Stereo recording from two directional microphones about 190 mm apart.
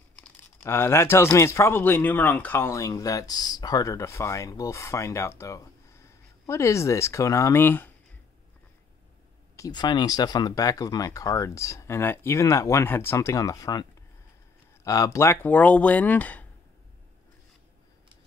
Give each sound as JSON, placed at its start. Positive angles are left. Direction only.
{"t": 0.2, "sound": "speech", "side_deg": 15}
{"t": 9.6, "sound": "speech", "side_deg": 20}
{"t": 14.9, "sound": "speech", "side_deg": 15}